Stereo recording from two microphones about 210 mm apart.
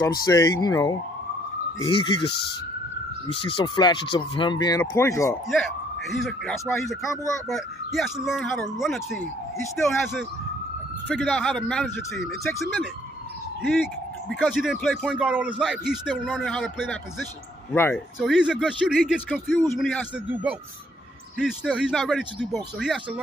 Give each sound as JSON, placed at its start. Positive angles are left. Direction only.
{"t": 0.2, "sound": "speech", "side_deg": 20}
{"t": 5.5, "sound": "speech", "side_deg": 0}
{"t": 7.0, "sound": "speech", "side_deg": 15}
{"t": 7.4, "sound": "speech", "side_deg": 0}
{"t": 14.4, "sound": "speech", "side_deg": 0}
{"t": 17.7, "sound": "speech", "side_deg": 10}
{"t": 18.2, "sound": "speech", "side_deg": -5}
{"t": 21.4, "sound": "speech", "side_deg": -5}